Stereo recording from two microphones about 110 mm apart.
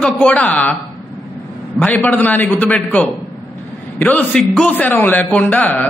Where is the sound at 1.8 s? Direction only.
15° left (ahead or behind).